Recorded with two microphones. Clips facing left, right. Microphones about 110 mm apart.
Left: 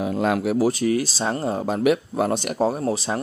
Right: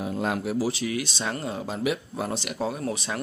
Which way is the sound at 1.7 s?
60° left (ahead or behind).